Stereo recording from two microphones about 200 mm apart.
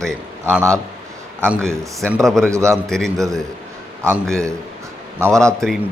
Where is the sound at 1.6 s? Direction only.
5° left (ahead or behind).